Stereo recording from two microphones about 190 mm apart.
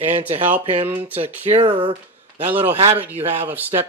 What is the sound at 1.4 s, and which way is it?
Speech, 30° right (ahead or behind).